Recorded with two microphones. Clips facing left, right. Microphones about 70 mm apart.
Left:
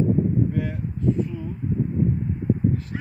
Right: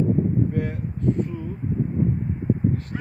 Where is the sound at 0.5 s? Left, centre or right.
Right.